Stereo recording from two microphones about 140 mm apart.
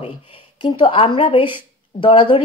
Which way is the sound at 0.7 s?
35° left (ahead or behind).